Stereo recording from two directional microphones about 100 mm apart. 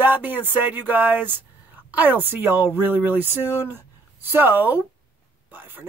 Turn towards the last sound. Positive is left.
turn(degrees=-20)  # may be behind; listen again after turning